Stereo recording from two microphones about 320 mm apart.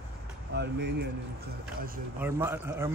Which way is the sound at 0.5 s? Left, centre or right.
Right.